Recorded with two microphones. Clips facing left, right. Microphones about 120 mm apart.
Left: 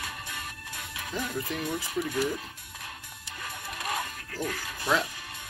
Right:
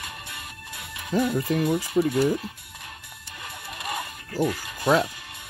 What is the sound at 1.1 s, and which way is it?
Speech, 40° right (ahead or behind).